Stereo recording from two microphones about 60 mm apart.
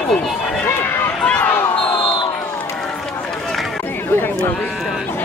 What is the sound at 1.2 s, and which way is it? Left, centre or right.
Basketball bounce, centre.